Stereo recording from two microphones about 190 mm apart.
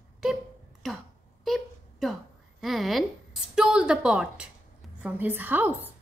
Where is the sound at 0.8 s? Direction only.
Centre (ahead or behind).